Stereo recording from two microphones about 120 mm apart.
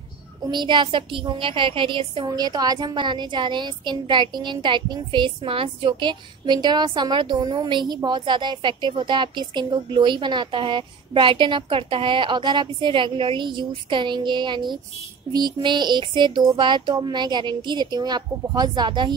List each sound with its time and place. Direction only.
0.5 s speech: 40° right (ahead or behind)
2.2 s a woman's voice: 35° right (ahead or behind)